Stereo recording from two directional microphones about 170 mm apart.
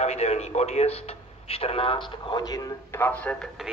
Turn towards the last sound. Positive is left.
turn(degrees=10)  # may be behind; listen again after turning